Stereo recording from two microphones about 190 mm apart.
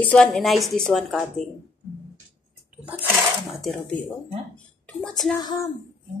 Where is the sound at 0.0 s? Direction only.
5° left (ahead or behind).